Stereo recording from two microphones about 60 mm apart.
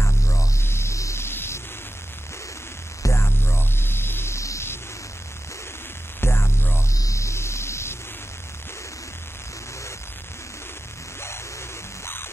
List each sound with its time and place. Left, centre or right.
0.0 s music: left
0.7 s music: left
1.2 s music: left
3.0 s music: left
4.4 s music: left
6.2 s music: left
6.9 s music: left
11.1 s music: left